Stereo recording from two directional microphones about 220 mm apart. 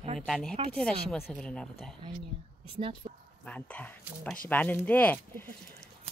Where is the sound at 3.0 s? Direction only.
20° right (ahead or behind).